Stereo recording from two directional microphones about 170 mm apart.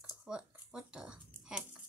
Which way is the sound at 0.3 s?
5° right (ahead or behind).